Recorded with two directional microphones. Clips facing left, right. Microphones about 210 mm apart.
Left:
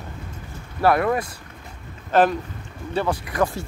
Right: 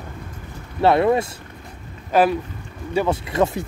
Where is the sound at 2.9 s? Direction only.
20° right (ahead or behind).